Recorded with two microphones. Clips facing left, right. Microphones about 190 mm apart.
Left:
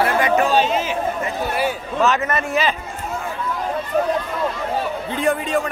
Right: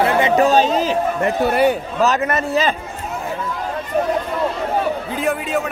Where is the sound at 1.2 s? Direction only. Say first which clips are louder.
Right 7 dB; 60° right (ahead or behind).